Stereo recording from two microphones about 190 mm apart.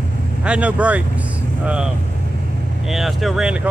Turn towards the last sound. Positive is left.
turn(degrees=-5)  # may be behind; listen again after turning